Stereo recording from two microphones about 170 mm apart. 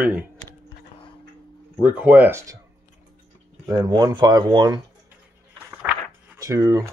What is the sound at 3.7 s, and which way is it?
Speech, 25° right (ahead or behind).